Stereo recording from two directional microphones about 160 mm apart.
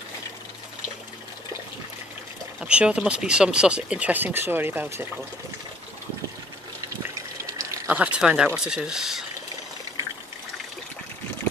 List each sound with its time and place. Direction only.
2.6 s speech: 5° right (ahead or behind)
7.5 s a sound: 20° right (ahead or behind)
8.0 s speech: 5° right (ahead or behind)